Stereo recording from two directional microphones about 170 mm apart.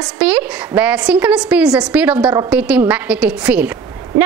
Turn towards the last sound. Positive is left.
turn(degrees=-10)  # may be behind; listen again after turning